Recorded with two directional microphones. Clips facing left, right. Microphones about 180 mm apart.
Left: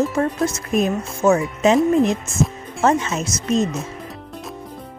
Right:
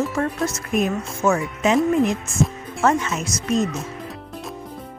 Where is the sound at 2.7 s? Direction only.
25° left (ahead or behind).